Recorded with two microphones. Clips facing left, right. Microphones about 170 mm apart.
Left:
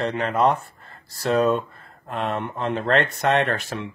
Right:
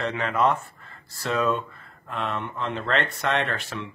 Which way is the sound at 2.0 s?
50° left (ahead or behind).